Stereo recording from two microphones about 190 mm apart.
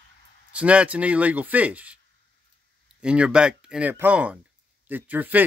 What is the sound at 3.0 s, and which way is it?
Speech, 5° right (ahead or behind).